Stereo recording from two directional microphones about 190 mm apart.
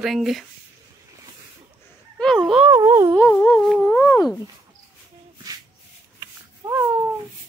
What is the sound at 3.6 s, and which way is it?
Humming, 5° left (ahead or behind).